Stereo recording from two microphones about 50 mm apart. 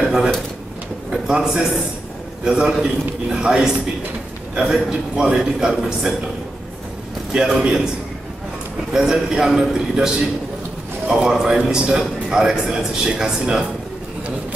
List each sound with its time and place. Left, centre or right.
1.3 s a man's voice: centre
7.3 s a man's voice: centre
8.9 s a man's voice: centre